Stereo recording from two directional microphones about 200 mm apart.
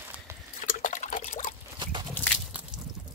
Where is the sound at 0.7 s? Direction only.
40° left (ahead or behind).